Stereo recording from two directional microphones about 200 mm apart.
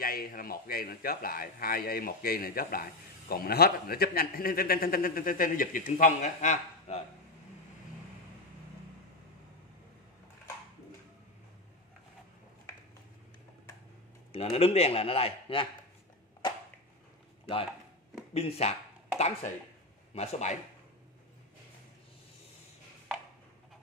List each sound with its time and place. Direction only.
0.0 s a man's voice: 45° left (ahead or behind)
14.3 s speech: 30° left (ahead or behind)
18.3 s speech: 30° left (ahead or behind)